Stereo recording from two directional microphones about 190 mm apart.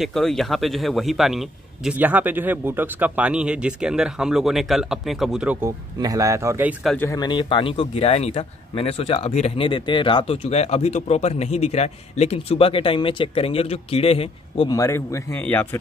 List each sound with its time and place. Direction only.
0.0 s speech: centre (ahead or behind)
5.9 s speech: 20° right (ahead or behind)
7.0 s speech: 20° left (ahead or behind)
14.7 s speech: 15° left (ahead or behind)